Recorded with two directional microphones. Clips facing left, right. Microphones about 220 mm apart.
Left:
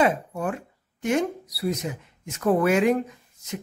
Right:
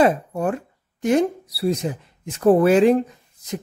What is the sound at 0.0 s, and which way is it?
Speech, 40° right (ahead or behind).